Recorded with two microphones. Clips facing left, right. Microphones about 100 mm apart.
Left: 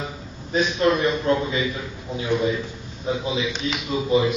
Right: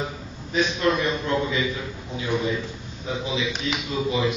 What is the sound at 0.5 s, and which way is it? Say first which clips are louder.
A man's voice: left 2 dB; 35° left (ahead or behind).